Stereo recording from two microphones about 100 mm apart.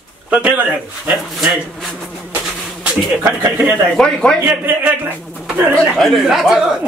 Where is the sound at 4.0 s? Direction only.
5° left (ahead or behind).